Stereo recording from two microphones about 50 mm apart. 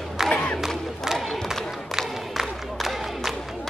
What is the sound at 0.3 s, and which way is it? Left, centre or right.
Battle cry, left.